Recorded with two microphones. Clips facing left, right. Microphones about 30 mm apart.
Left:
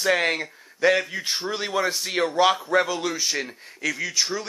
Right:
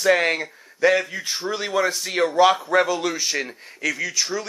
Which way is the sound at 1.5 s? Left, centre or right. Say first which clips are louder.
Right 4 dB; centre.